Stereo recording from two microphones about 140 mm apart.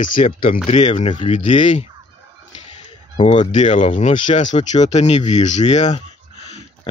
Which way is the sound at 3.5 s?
60° left (ahead or behind).